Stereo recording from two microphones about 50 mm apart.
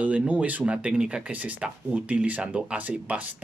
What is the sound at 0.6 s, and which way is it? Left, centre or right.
Speech, right.